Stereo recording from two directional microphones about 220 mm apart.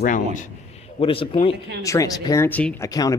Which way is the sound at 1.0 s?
25° left (ahead or behind).